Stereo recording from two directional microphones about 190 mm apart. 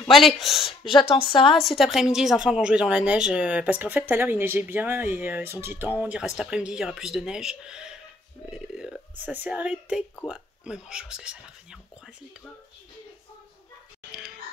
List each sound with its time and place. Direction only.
0.0 s a woman's voice: centre (ahead or behind)
0.7 s a woman's voice: 25° left (ahead or behind)
1.5 s a woman's voice: centre (ahead or behind)